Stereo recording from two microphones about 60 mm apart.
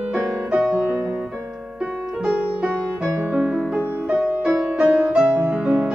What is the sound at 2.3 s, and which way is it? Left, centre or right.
Music, centre.